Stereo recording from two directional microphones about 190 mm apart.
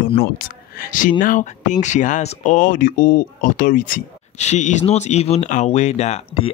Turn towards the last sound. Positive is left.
turn(degrees=30)  # may be behind; listen again after turning